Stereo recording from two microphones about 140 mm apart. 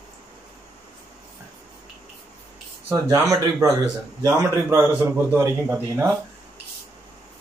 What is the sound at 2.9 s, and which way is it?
Speech, 20° right (ahead or behind).